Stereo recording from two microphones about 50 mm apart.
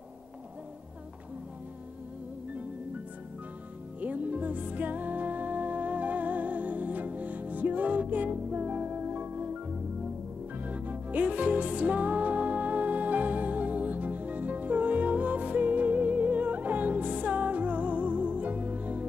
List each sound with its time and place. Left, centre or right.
4.0 s music: right
10.6 s music: right